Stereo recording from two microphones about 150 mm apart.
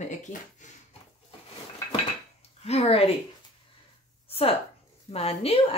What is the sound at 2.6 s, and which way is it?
Speech, 45° left (ahead or behind).